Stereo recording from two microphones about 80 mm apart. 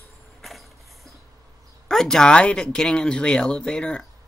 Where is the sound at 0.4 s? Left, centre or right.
Centre.